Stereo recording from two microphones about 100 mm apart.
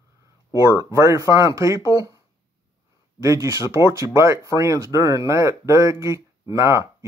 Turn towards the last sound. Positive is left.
turn(degrees=-30)  # may be behind; listen again after turning